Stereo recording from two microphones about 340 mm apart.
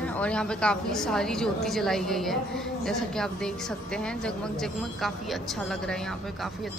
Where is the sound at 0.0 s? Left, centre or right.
Centre.